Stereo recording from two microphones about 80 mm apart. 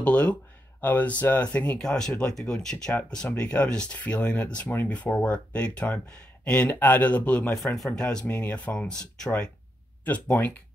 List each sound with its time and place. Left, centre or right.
0.0 s speech: centre
1.8 s speech: centre
7.5 s speech: centre